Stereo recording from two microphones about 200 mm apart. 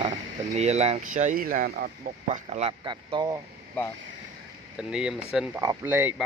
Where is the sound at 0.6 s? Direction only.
30° right (ahead or behind).